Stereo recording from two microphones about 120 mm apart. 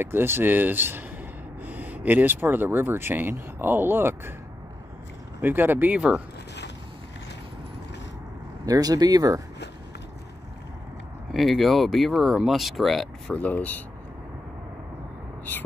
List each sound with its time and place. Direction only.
0.0 s speech: 20° right (ahead or behind)
5.4 s speech: 15° right (ahead or behind)
8.6 s speech: 30° right (ahead or behind)
11.3 s speech: centre (ahead or behind)